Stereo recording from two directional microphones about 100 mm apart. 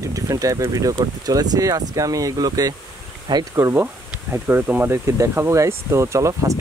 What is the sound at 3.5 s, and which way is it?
Speech, 25° right (ahead or behind).